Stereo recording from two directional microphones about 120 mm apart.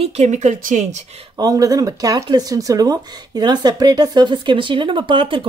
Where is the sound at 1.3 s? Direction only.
30° right (ahead or behind).